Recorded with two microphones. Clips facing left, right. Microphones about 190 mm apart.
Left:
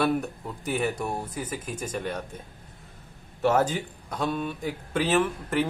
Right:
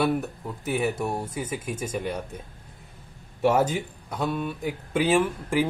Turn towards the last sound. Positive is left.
turn(degrees=-10)  # may be behind; listen again after turning